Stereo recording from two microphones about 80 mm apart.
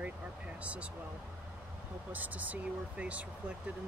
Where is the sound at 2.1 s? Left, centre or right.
Centre.